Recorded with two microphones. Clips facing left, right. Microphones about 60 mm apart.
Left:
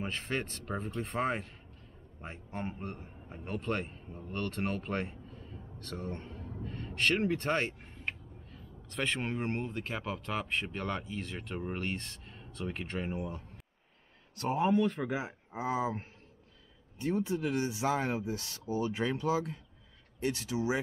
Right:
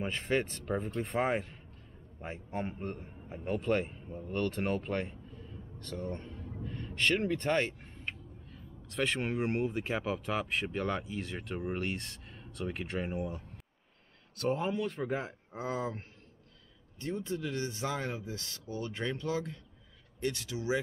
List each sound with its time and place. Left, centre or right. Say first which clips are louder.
0.0 s speech: right 4 dB; centre
2.7 s speech: right 2 dB; centre
6.1 s speech: even; centre
6.4 s a sound: even; centre
7.5 s speech: right 3 dB; centre
8.5 s speech: right 1 dB; centre
14.4 s speech: left 4 dB; centre
17.2 s speech: left 3 dB; centre